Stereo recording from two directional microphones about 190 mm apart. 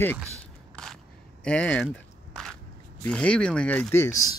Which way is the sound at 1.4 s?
5° left (ahead or behind).